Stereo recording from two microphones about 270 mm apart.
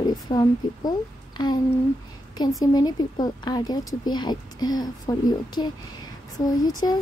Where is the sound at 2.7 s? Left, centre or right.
Centre.